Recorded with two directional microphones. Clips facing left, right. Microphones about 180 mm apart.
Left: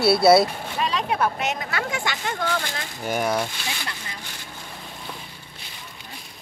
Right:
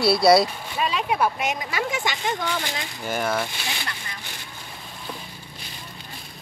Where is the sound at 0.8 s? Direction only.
10° right (ahead or behind).